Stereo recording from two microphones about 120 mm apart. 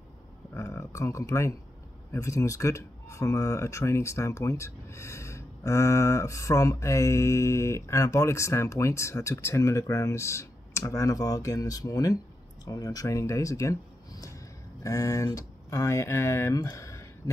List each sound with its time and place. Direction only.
0.6 s speech: 25° left (ahead or behind)